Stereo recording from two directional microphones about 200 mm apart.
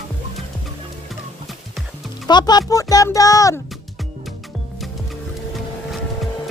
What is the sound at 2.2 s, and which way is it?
Speech, 20° left (ahead or behind).